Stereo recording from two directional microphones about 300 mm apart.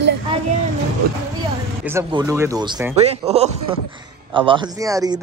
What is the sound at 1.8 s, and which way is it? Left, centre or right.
Speech, centre.